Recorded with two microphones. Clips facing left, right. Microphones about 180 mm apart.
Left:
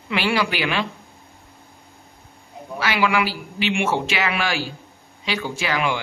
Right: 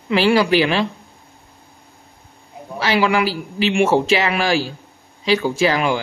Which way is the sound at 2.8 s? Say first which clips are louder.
Right 4 dB; 35° right (ahead or behind).